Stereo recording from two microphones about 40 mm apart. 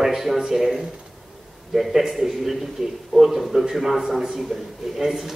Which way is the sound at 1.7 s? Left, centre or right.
Centre.